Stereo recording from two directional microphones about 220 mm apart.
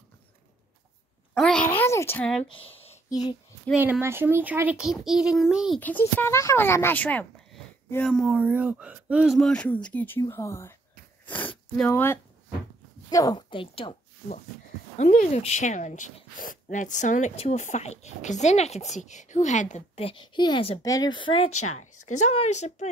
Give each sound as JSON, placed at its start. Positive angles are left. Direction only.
{"t": 1.3, "sound": "a sound", "side_deg": 0}
{"t": 2.4, "sound": "a child's voice", "side_deg": 25}
{"t": 3.8, "sound": "a child's voice", "side_deg": -10}
{"t": 15.0, "sound": "speech", "side_deg": 35}
{"t": 21.5, "sound": "speech", "side_deg": 90}
{"t": 21.7, "sound": "speech", "side_deg": 30}